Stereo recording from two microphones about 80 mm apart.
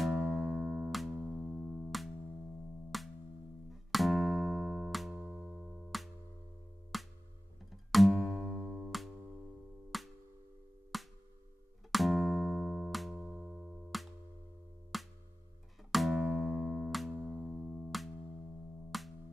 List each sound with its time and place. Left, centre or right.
0.0 s music: centre
5.4 s music: centre
5.8 s music: centre
8.5 s music: right
9.8 s music: centre
13.1 s music: left
13.5 s music: centre
14.9 s music: centre